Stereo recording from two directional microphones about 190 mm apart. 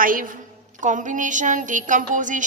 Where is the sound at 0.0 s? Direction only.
45° right (ahead or behind).